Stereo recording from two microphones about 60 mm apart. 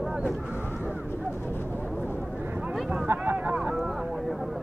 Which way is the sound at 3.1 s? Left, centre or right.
Right.